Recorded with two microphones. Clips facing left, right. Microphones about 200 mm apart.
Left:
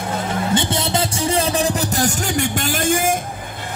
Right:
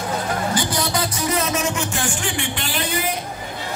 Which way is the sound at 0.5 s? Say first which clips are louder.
Left 3 dB; 25° left (ahead or behind).